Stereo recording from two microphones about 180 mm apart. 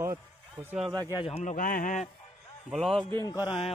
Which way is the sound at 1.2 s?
40° left (ahead or behind).